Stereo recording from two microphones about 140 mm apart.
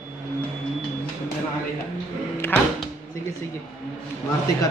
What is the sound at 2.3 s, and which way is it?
Speech, 15° left (ahead or behind).